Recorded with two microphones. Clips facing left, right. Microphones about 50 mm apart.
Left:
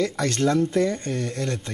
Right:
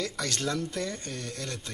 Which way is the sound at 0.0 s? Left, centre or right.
Left.